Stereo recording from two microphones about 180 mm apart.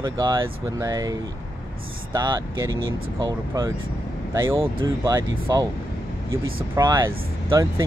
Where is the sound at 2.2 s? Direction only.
20° right (ahead or behind).